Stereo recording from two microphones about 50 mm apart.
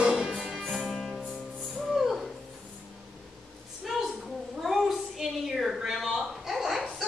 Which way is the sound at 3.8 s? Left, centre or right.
Centre.